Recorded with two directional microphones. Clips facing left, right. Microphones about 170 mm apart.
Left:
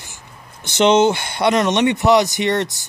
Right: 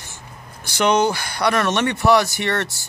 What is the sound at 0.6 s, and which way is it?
Speech, 25° left (ahead or behind).